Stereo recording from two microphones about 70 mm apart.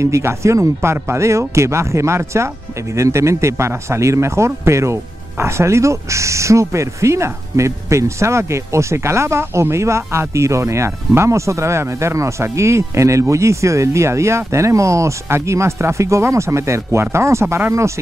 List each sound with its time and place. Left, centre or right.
0.0 s speech: right